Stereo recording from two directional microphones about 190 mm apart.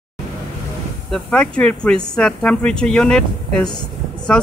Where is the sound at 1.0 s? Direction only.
5° left (ahead or behind).